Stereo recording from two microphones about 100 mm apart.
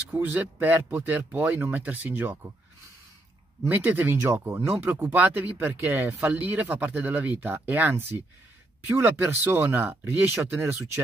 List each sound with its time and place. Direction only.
0.1 s speech: 15° right (ahead or behind)
3.6 s speech: 20° right (ahead or behind)